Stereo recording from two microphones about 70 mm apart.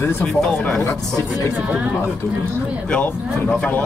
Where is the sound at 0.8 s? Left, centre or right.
Left.